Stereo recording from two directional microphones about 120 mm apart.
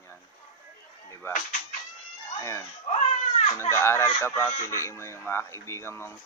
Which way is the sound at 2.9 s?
60° left (ahead or behind).